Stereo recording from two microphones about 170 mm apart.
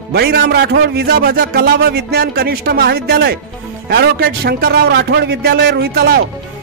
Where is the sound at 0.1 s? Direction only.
70° right (ahead or behind).